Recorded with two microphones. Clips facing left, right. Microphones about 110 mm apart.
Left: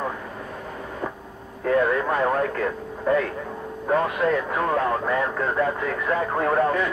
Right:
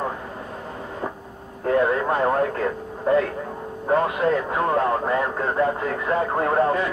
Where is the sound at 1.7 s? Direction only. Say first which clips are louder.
Right 1 dB; 30° right (ahead or behind).